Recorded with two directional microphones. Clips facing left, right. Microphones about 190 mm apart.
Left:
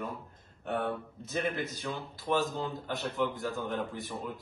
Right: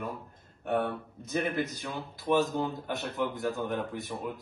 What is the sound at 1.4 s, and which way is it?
A man's voice, centre (ahead or behind).